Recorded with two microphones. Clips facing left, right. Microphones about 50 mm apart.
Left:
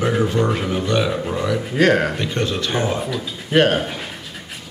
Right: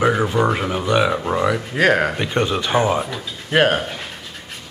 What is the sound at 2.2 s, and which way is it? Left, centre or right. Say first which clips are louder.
Speech: right 2 dB; centre.